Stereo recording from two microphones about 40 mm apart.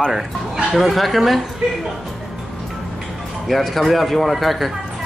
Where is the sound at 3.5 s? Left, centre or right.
Centre.